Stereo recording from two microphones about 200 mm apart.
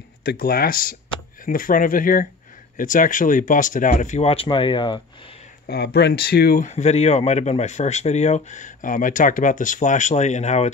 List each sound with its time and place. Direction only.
0.2 s speech: 50° left (ahead or behind); by 5.3 s 25° left (ahead or behind)
5.7 s speech: 55° left (ahead or behind); by 10.7 s 35° left (ahead or behind)